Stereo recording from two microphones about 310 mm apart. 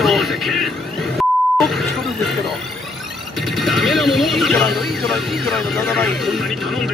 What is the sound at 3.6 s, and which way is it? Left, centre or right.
Speech, centre.